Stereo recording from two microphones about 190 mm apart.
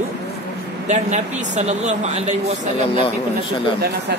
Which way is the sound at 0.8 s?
35° right (ahead or behind).